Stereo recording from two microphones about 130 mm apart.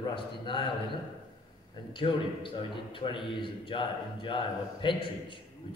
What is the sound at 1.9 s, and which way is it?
A man's voice, 40° left (ahead or behind).